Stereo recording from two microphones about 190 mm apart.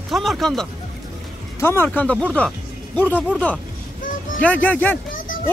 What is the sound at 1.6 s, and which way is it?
Speech, 10° left (ahead or behind).